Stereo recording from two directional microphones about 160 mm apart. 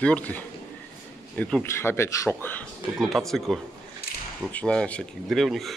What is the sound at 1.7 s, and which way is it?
Speech, 15° left (ahead or behind).